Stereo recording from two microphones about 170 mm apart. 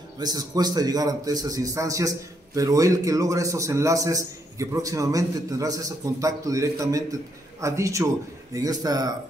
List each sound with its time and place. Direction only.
0.2 s a man's voice: 25° right (ahead or behind)